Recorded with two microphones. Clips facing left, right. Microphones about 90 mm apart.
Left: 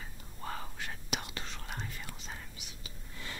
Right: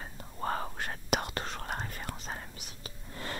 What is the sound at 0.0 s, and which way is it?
Whispering, 50° right (ahead or behind).